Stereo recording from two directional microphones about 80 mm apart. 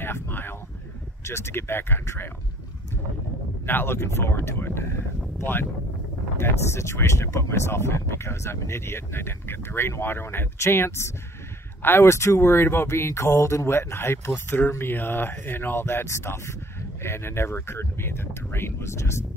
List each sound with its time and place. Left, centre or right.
0.0 s a sound: left
1.2 s speech: left
3.6 s speech: left